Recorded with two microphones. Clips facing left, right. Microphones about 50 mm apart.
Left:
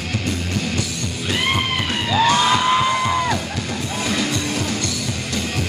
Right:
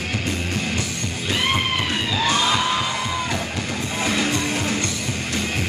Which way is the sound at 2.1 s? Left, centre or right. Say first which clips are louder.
Left 6 dB; left.